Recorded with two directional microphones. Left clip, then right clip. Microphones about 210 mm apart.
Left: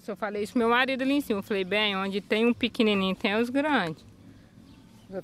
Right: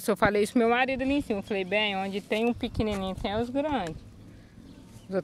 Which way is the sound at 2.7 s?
65° left (ahead or behind).